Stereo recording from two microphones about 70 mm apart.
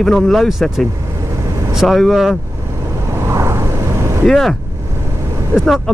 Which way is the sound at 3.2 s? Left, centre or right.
Right.